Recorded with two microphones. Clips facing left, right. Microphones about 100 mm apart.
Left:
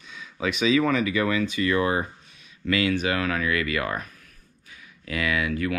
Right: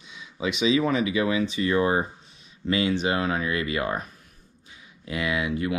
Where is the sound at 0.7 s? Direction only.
20° right (ahead or behind).